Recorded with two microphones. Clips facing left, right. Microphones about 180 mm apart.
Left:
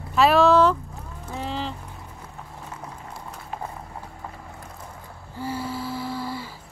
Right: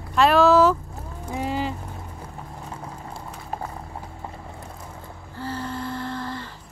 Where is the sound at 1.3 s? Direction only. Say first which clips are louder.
Right 4 dB; 10° right (ahead or behind).